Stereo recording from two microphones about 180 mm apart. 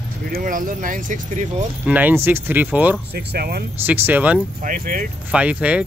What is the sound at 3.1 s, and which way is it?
Speech, 60° right (ahead or behind).